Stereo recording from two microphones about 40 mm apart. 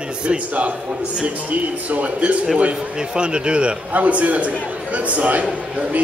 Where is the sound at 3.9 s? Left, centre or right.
Right.